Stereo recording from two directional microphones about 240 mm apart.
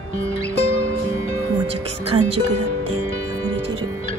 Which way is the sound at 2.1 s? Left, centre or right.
Right.